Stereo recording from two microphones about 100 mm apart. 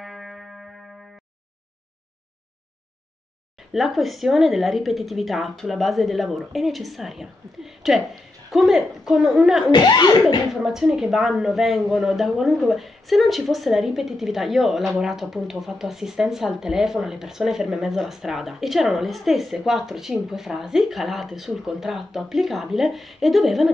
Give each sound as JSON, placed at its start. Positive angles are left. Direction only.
{"t": 0.0, "sound": "music", "side_deg": 0}
{"t": 3.7, "sound": "speech", "side_deg": 0}
{"t": 9.7, "sound": "speech", "side_deg": 45}
{"t": 10.5, "sound": "speech", "side_deg": -5}